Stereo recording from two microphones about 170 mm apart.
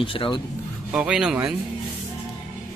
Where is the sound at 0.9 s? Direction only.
5° right (ahead or behind).